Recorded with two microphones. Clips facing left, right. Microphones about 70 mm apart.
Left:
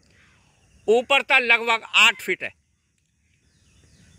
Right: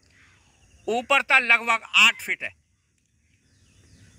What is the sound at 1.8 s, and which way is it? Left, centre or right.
Speech, centre.